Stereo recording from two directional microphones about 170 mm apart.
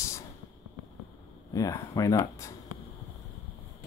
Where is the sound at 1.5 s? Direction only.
20° left (ahead or behind).